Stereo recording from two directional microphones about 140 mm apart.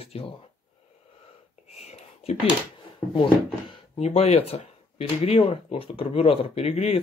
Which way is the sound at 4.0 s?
50° left (ahead or behind).